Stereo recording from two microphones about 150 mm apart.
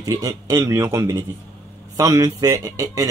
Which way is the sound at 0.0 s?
25° right (ahead or behind).